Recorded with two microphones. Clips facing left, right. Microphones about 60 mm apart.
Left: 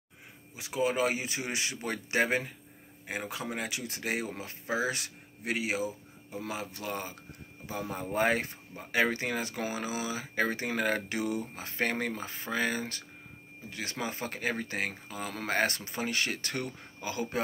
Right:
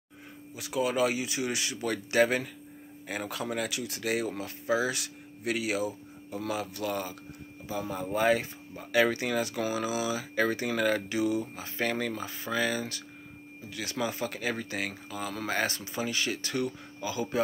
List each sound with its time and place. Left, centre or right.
0.6 s speech: left
7.6 s speech: left
8.9 s speech: left
11.1 s speech: left